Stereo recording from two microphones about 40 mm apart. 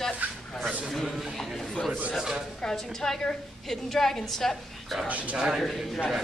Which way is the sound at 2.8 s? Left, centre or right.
Centre.